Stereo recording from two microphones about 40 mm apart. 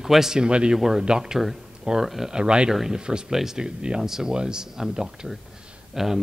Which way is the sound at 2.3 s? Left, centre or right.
Right.